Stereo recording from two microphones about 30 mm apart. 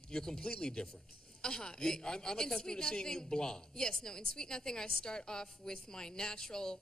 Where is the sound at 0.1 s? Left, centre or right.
Left.